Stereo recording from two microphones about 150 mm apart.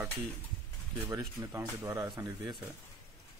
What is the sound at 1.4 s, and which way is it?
Speech, 15° right (ahead or behind).